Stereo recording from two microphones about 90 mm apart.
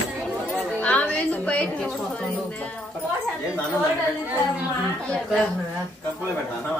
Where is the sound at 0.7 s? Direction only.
15° left (ahead or behind).